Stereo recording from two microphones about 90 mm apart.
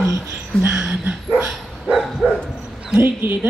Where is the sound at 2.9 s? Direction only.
20° right (ahead or behind).